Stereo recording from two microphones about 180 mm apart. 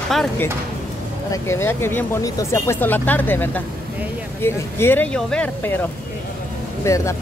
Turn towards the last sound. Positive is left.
turn(degrees=15)  # may be behind; listen again after turning